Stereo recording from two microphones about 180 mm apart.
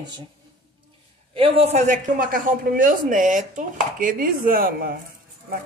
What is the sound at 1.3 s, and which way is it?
A woman's voice, 30° right (ahead or behind).